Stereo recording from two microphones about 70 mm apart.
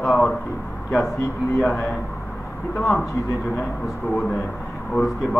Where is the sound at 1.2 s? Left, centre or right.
Left.